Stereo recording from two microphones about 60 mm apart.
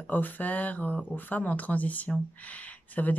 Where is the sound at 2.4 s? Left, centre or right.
Left.